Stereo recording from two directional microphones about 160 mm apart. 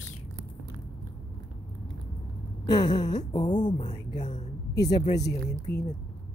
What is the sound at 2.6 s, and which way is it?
Speech, 25° left (ahead or behind).